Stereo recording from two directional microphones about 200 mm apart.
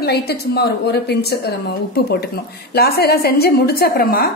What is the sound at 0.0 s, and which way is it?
Speech, 55° left (ahead or behind).